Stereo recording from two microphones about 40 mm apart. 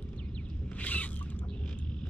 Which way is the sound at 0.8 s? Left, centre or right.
Left.